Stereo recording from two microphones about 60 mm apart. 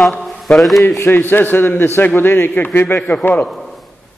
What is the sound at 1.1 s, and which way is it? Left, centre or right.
A man's voice, left.